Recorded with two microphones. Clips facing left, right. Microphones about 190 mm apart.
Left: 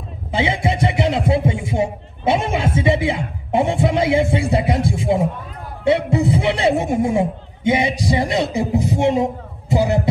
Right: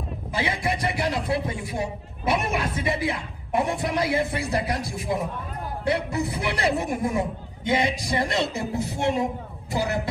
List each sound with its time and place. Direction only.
0.3 s a man's voice: 25° left (ahead or behind)